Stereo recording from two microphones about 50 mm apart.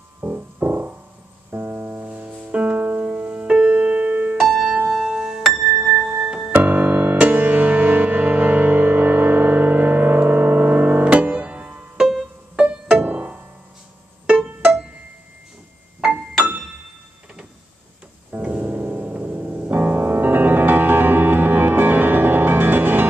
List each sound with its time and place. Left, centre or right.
0.2 s music: right
3.4 s music: centre
4.4 s music: centre
6.5 s music: right
18.3 s piano: right
19.8 s music: right